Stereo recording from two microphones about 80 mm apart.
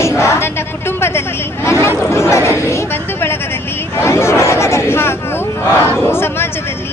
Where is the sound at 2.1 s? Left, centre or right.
Left.